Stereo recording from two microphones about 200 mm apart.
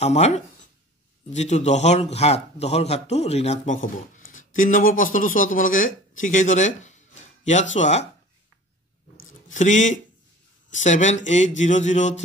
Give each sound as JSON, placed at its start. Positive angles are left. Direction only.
{"t": 0.0, "sound": "a man's voice", "side_deg": 35}
{"t": 9.5, "sound": "a man's voice", "side_deg": 40}